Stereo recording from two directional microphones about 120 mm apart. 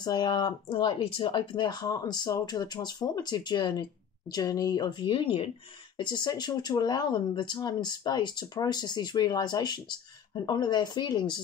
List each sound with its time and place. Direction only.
0.0 s speech: 35° left (ahead or behind)